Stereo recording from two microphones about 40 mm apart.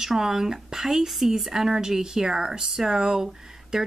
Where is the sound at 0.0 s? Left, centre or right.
Centre.